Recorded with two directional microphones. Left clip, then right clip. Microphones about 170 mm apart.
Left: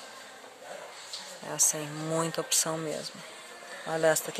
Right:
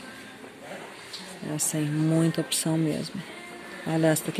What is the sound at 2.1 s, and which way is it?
Speech, 10° left (ahead or behind).